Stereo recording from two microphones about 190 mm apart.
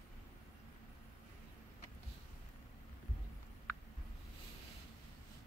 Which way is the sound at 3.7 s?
10° left (ahead or behind).